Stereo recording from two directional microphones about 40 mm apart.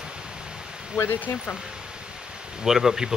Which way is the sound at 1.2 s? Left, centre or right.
Left.